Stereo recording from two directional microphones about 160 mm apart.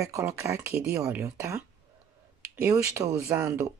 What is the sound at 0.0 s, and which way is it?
Speech, 20° right (ahead or behind).